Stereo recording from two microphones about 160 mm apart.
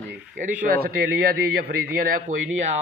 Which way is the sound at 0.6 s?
65° right (ahead or behind).